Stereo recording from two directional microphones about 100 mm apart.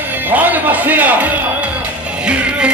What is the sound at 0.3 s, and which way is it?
Music, 15° right (ahead or behind).